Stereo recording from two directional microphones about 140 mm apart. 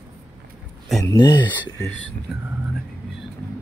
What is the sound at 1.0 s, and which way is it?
Speech, 30° left (ahead or behind).